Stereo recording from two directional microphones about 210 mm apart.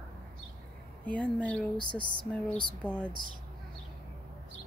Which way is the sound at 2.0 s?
20° left (ahead or behind).